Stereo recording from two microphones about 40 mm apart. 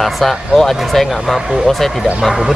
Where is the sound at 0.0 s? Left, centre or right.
Centre.